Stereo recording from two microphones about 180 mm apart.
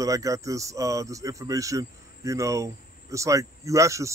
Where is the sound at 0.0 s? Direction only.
20° right (ahead or behind).